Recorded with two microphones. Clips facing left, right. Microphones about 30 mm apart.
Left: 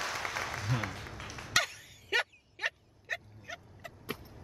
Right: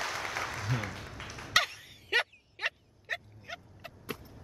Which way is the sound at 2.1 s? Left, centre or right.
Right.